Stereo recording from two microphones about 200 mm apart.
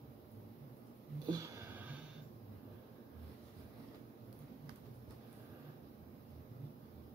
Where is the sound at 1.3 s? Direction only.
15° right (ahead or behind).